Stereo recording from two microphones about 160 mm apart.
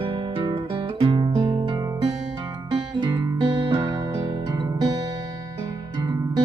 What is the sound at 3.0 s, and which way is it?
Music, 25° right (ahead or behind).